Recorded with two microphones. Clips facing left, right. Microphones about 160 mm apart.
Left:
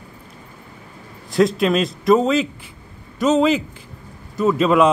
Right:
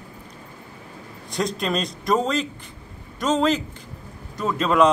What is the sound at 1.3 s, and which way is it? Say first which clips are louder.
A man's voice: left 8 dB; centre (ahead or behind).